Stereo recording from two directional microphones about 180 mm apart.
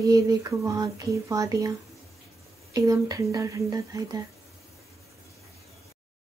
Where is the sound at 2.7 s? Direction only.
20° right (ahead or behind).